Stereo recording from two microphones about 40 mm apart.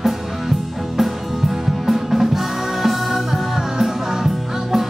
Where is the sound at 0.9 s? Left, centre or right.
Centre.